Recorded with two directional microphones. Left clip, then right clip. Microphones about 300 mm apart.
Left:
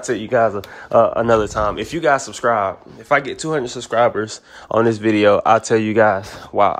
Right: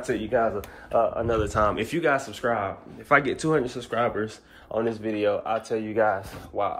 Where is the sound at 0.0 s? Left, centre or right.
Centre.